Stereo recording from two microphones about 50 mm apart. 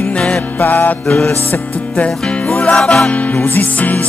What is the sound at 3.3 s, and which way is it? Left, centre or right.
Music, left.